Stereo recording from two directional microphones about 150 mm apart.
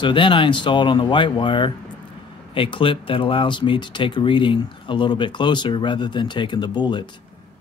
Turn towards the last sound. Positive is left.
turn(degrees=30)  # may be behind; listen again after turning